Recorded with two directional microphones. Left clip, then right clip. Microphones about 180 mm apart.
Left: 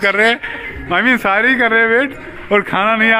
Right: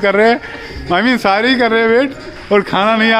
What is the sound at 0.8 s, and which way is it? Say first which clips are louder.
Speech: right 1 dB; 30° right (ahead or behind).